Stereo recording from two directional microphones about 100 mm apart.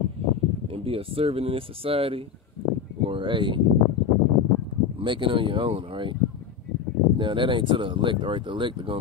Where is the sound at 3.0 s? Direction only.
55° right (ahead or behind).